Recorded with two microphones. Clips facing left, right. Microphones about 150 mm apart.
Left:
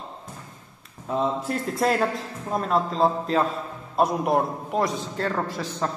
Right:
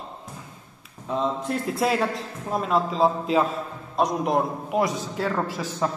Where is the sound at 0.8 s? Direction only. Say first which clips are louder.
Left 1 dB; 5° left (ahead or behind).